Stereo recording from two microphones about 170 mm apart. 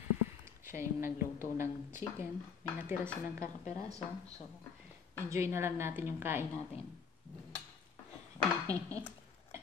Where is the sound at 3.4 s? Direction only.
40° left (ahead or behind).